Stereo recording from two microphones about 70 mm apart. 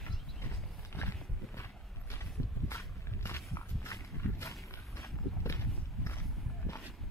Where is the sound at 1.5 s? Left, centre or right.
Left.